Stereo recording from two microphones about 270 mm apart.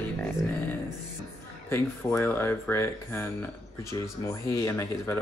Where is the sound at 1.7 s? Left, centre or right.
Centre.